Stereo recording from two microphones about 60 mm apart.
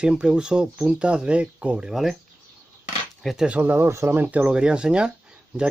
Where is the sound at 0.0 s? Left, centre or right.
Centre.